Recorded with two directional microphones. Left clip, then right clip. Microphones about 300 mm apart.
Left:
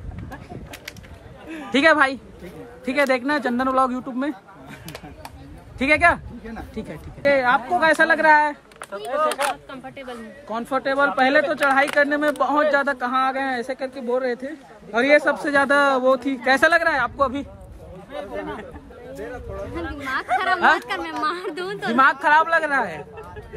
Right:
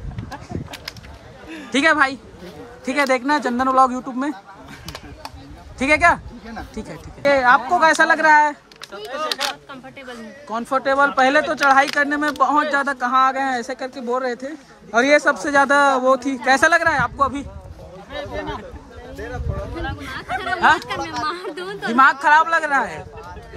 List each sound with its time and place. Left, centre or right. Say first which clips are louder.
0.3 s a sound: right 5 dB; centre
1.5 s a woman's voice: even; centre
4.8 s a sound: right 4 dB; centre
5.8 s speech: right 2 dB; centre
18.1 s speech: right 2 dB; right
20.2 s speech: left 5 dB; centre
21.2 s a woman's voice: even; centre